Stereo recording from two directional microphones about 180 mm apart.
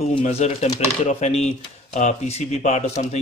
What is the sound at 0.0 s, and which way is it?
Speech, 35° left (ahead or behind).